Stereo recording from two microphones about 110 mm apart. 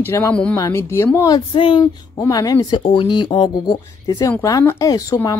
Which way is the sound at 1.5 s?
55° left (ahead or behind).